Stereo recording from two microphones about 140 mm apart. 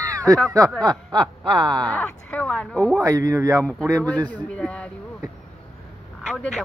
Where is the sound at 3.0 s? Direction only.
25° right (ahead or behind).